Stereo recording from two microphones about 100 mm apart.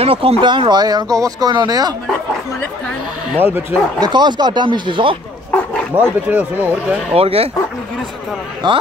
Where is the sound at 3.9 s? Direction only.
45° right (ahead or behind).